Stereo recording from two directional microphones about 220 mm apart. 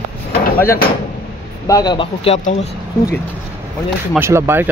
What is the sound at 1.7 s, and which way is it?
Speech, 20° left (ahead or behind).